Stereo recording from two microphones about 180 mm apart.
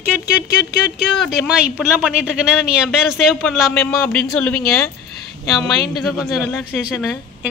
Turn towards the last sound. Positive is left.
turn(degrees=10)  # may be behind; listen again after turning